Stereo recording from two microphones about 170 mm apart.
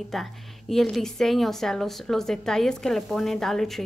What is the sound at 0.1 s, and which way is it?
A woman's voice, centre (ahead or behind).